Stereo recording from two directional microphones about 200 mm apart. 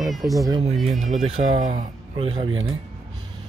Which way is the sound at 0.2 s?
15° right (ahead or behind).